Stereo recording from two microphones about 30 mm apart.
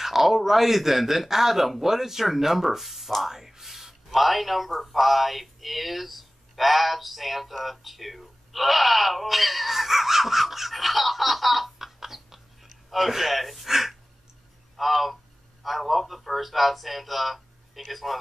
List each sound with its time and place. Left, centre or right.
0.0 s speech: centre
3.2 s a sound: centre
4.6 s a man's voice: centre